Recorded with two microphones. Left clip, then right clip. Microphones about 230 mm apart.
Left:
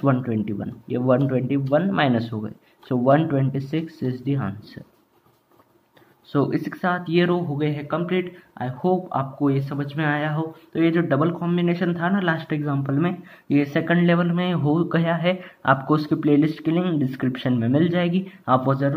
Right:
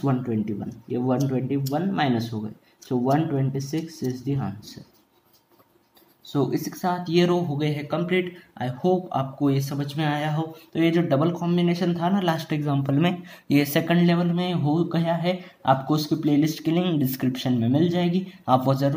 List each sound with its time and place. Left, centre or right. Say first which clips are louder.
0.0 s speech: left 4 dB; centre
6.3 s speech: left 2 dB; centre; by 18.9 s right